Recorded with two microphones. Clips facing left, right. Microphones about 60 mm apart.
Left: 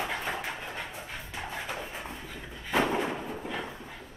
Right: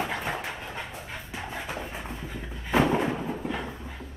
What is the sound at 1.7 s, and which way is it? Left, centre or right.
Dog, centre.